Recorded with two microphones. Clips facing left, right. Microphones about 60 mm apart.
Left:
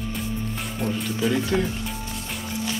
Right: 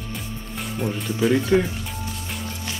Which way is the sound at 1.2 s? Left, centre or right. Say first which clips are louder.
Right 5 dB; centre.